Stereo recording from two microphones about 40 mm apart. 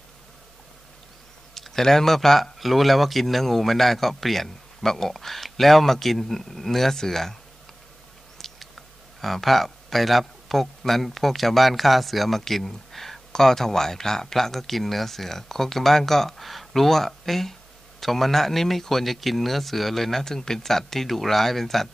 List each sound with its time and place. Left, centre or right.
1.5 s speech: centre
8.4 s speech: centre